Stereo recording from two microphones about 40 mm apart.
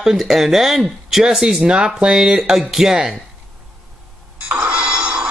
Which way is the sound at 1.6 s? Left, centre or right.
Right.